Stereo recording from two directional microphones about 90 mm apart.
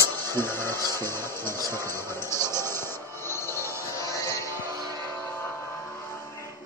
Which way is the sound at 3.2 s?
30° left (ahead or behind).